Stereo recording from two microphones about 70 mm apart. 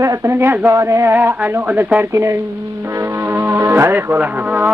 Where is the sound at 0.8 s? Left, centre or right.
Right.